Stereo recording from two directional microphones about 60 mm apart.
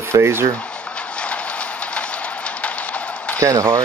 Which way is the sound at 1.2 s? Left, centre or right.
Centre.